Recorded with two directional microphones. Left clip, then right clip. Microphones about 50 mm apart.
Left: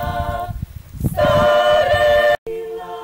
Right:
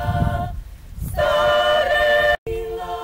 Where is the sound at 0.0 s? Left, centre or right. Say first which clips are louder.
Left 2 dB; centre.